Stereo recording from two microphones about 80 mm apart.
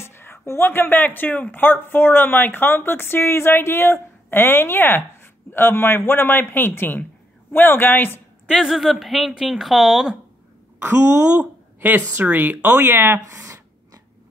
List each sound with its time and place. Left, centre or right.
0.0 s speech: left
8.5 s speech: centre
11.1 s speech: centre
13.3 s a sound: right